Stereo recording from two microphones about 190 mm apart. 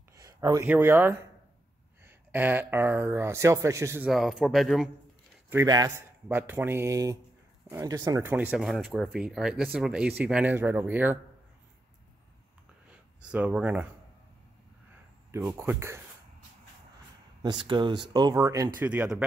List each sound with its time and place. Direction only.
0.1 s speech: 15° right (ahead or behind)
4.1 s speech: centre (ahead or behind)
5.5 s speech: 15° right (ahead or behind)
13.2 s speech: 5° right (ahead or behind)
15.3 s speech: 15° right (ahead or behind)
17.4 s speech: 25° right (ahead or behind); by 19.2 s 5° right (ahead or behind)